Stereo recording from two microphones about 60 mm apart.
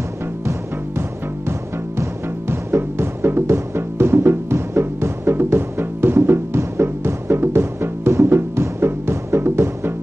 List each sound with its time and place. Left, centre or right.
2.5 s music: right